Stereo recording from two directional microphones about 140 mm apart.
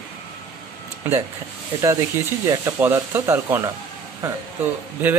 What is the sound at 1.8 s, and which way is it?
A man's voice, 20° right (ahead or behind).